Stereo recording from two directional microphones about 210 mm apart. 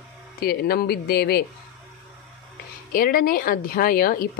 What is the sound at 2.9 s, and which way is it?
A woman's voice, 45° left (ahead or behind).